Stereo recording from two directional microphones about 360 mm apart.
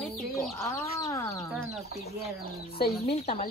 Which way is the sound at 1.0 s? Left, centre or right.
Centre.